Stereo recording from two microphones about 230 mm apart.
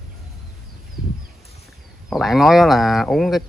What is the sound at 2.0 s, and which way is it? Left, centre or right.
Speech, centre.